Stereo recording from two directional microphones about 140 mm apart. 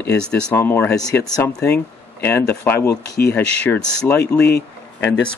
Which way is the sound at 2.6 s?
15° left (ahead or behind).